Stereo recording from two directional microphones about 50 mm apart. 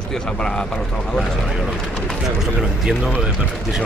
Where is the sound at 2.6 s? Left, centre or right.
Centre.